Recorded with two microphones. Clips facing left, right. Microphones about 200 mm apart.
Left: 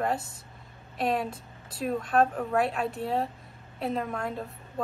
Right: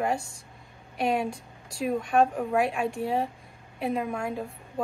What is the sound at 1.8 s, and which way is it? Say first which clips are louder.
Speech: right 2 dB; centre (ahead or behind).